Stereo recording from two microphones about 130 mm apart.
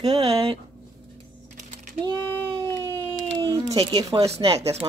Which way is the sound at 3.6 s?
30° right (ahead or behind).